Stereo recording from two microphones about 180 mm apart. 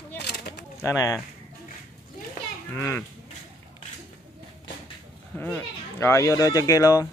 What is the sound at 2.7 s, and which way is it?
Speech, 10° left (ahead or behind).